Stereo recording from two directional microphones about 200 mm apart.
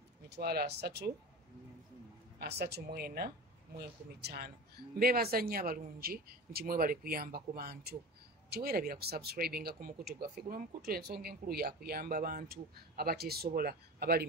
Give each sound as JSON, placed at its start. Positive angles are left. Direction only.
{"t": 0.3, "sound": "speech", "side_deg": -50}
{"t": 2.3, "sound": "speech", "side_deg": -55}